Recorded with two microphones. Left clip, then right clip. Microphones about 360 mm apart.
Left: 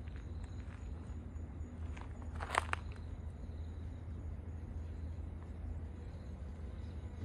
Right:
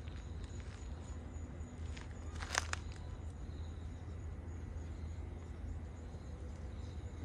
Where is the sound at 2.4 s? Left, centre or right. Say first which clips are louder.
Left 3 dB; centre.